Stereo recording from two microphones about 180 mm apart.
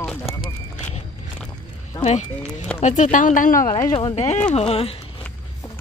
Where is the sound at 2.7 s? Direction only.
40° left (ahead or behind).